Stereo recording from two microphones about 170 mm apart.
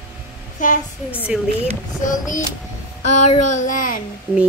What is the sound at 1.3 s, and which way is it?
Speech, centre (ahead or behind).